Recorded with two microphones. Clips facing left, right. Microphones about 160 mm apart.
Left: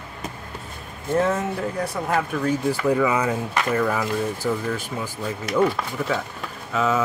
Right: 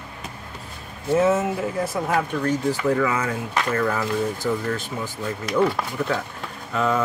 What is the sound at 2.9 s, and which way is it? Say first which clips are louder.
Speech: left 2 dB; 15° left (ahead or behind).